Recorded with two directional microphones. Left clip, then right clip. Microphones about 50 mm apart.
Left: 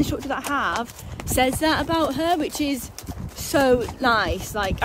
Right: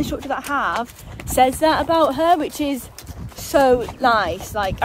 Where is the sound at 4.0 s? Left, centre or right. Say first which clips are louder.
Right 3 dB; left.